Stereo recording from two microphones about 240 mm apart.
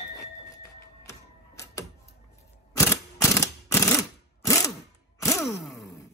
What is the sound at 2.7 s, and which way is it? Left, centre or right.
Mechanisms, centre.